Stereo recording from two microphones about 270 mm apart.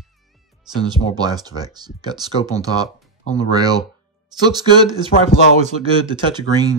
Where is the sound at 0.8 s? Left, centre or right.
Centre.